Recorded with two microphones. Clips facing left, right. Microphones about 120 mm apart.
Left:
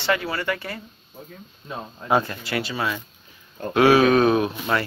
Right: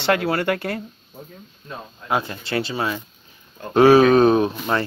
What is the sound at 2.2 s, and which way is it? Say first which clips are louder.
Speech: right 3 dB; 25° right (ahead or behind).